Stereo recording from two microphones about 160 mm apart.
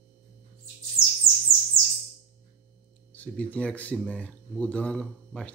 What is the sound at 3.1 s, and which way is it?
Speech, 10° left (ahead or behind).